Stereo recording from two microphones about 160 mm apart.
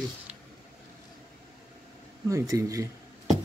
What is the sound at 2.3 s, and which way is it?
Speech, 20° right (ahead or behind).